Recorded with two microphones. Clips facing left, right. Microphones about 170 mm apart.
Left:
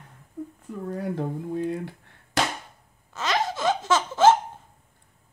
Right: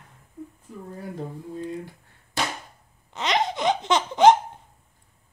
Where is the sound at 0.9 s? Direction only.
75° left (ahead or behind).